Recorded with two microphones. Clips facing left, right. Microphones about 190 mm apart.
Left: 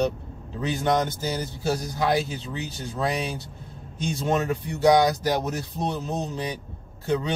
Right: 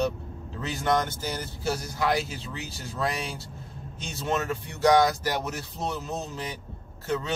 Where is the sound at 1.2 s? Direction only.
15° left (ahead or behind).